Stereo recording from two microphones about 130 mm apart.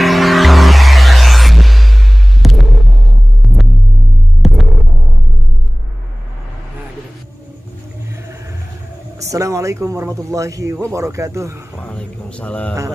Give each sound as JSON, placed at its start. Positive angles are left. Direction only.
{"t": 0.0, "sound": "music", "side_deg": 0}
{"t": 3.4, "sound": "throbbing", "side_deg": 0}
{"t": 9.2, "sound": "speech", "side_deg": -25}
{"t": 11.8, "sound": "speech", "side_deg": 10}